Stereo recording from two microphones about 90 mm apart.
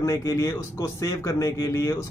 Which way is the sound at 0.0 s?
35° left (ahead or behind).